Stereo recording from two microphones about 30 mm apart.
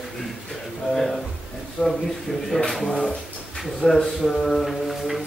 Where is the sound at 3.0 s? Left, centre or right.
Centre.